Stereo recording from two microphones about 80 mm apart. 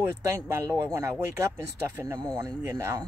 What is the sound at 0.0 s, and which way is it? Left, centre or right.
Speech, right.